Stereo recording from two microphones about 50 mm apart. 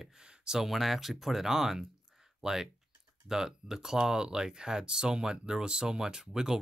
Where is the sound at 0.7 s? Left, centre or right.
Centre.